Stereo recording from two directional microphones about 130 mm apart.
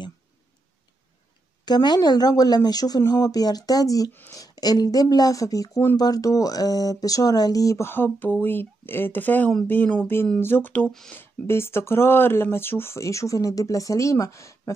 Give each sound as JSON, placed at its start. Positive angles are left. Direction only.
{"t": 1.7, "sound": "speech", "side_deg": 35}
{"t": 4.1, "sound": "speech", "side_deg": 15}
{"t": 4.4, "sound": "a woman's voice", "side_deg": 30}
{"t": 11.1, "sound": "speech", "side_deg": 20}